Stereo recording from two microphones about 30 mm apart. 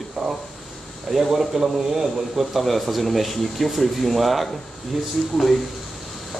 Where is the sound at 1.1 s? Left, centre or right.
Centre.